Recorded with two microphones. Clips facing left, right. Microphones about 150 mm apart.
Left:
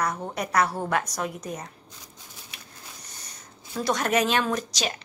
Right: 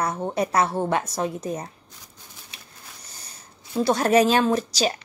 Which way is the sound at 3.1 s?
30° right (ahead or behind).